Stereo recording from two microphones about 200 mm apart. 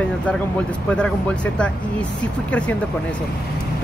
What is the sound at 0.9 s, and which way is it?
Speech, 5° left (ahead or behind).